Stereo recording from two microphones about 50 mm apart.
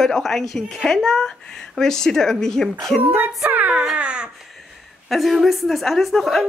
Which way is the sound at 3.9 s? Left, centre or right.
Centre.